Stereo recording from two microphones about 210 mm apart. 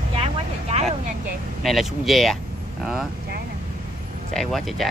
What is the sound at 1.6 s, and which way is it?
Speech, centre (ahead or behind).